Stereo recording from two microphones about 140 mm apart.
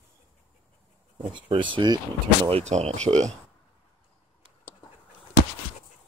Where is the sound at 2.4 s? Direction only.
50° right (ahead or behind).